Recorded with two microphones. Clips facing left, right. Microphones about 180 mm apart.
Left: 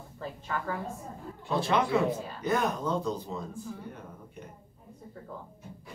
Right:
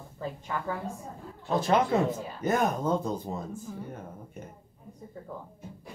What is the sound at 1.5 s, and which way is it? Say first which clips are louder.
Speech: right 2 dB; 45° right (ahead or behind).